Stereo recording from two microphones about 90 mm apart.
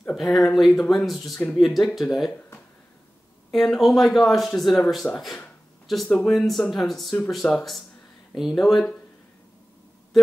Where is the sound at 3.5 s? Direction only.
5° left (ahead or behind).